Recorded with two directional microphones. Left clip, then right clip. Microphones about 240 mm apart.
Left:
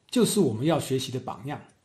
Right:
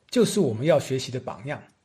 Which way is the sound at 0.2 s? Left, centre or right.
Right.